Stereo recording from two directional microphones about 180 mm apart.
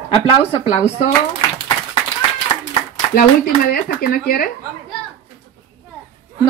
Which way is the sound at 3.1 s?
55° left (ahead or behind).